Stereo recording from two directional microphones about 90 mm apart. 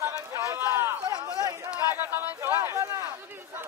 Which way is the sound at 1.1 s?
45° right (ahead or behind).